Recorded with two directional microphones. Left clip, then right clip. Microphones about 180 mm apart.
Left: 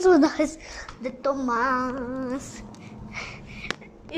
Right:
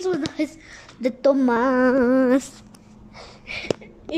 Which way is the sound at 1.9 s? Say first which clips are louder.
Right 13 dB; 60° right (ahead or behind).